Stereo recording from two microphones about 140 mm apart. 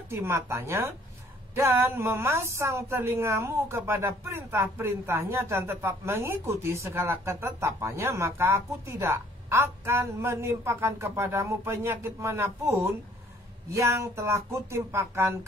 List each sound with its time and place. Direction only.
0.1 s speech: 15° right (ahead or behind)